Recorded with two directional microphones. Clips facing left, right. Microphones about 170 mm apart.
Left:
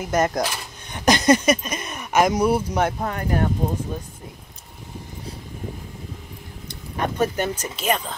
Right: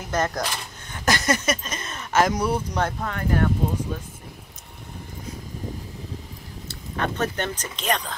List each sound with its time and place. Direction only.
0.0 s speech: 10° left (ahead or behind)
7.0 s speech: 10° left (ahead or behind)